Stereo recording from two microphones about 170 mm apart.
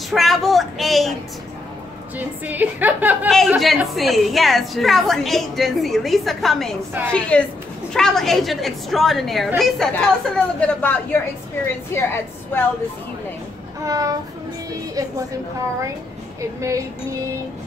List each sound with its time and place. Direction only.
0.1 s a sound: centre (ahead or behind)
2.1 s a woman's voice: 10° right (ahead or behind)
3.3 s a woman's voice: centre (ahead or behind)
13.8 s a woman's voice: 20° right (ahead or behind)
16.3 s a woman's voice: 20° right (ahead or behind)